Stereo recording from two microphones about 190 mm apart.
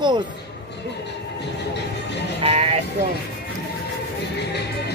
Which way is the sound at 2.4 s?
35° right (ahead or behind).